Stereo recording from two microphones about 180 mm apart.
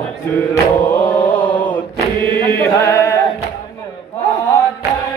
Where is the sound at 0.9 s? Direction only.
10° left (ahead or behind).